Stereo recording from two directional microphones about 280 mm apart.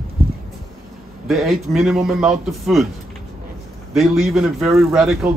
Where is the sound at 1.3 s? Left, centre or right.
Centre.